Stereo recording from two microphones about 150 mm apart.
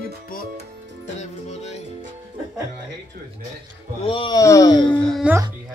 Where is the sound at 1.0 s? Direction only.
50° left (ahead or behind).